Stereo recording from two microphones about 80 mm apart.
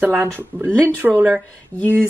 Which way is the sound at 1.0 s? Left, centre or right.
Centre.